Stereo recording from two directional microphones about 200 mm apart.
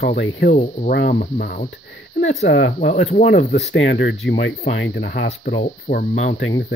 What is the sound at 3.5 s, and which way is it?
Speech, 60° left (ahead or behind).